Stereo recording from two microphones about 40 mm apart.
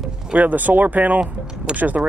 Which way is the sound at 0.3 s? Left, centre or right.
Right.